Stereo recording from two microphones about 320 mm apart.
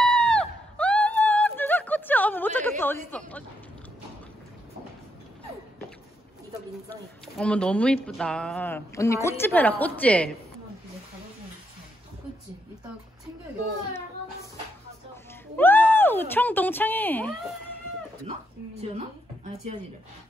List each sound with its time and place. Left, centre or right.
0.0 s a sound: centre
2.8 s speech: centre
7.3 s speech: centre
15.5 s speech: centre
18.8 s a woman's voice: centre